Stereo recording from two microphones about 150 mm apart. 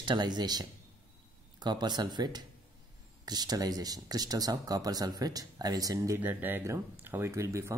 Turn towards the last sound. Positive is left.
turn(degrees=-20)  # may be behind; listen again after turning